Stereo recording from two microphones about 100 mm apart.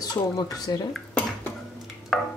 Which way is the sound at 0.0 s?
45° left (ahead or behind).